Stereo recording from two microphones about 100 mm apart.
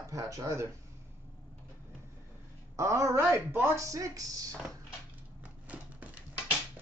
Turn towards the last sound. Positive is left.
turn(degrees=-15)  # may be behind; listen again after turning